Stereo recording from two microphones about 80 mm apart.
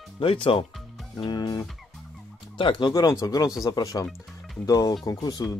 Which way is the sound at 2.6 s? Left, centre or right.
Left.